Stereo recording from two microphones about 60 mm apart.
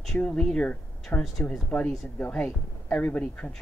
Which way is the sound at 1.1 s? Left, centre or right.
Left.